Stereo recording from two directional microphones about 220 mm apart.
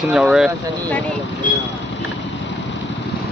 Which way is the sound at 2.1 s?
55° left (ahead or behind).